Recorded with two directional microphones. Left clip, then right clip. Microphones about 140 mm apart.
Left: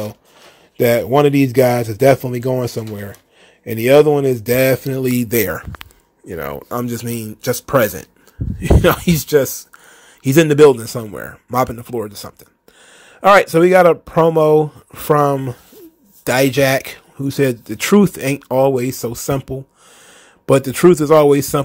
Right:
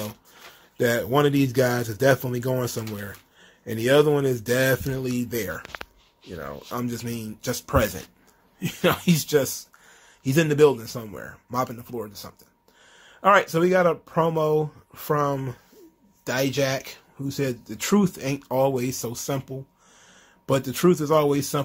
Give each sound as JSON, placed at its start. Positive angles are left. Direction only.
{"t": 0.7, "sound": "speech", "side_deg": 40}
{"t": 5.0, "sound": "speech", "side_deg": 60}
{"t": 6.3, "sound": "speech", "side_deg": 90}
{"t": 6.7, "sound": "speech", "side_deg": 50}